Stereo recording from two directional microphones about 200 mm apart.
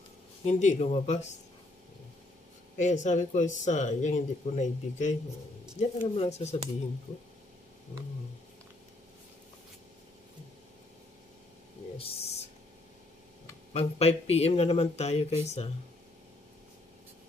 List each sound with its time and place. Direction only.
0.5 s speech: 35° left (ahead or behind)
2.8 s speech: 35° left (ahead or behind)
12.0 s a sound: 30° left (ahead or behind)
13.7 s speech: 30° left (ahead or behind)